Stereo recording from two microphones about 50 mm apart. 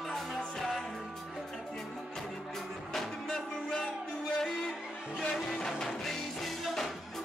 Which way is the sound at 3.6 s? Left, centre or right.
Centre.